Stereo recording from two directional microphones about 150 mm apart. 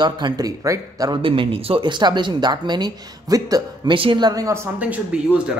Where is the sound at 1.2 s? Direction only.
35° right (ahead or behind).